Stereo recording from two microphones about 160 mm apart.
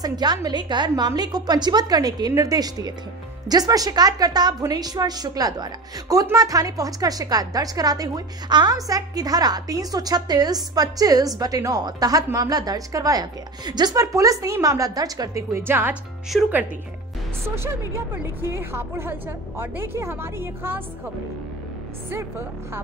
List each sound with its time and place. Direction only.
0.0 s a woman's voice: 25° right (ahead or behind); by 16.6 s 5° right (ahead or behind)
18.1 s a woman's voice: 15° right (ahead or behind)